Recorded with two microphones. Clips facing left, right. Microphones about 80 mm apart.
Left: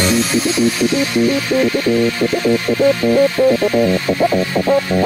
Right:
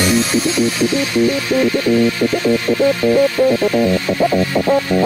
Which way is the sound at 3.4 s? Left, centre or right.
Centre.